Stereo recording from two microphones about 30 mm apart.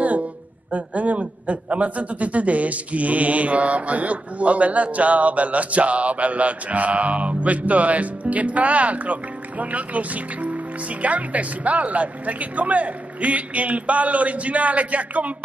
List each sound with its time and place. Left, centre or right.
0.7 s a man's voice: right